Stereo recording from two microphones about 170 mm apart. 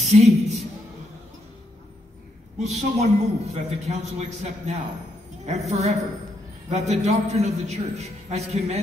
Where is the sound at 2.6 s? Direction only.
40° right (ahead or behind).